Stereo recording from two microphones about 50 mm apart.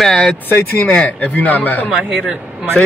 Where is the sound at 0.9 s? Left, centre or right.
Left.